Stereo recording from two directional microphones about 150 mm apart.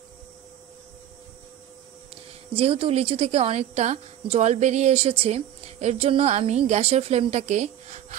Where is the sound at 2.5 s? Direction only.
40° right (ahead or behind).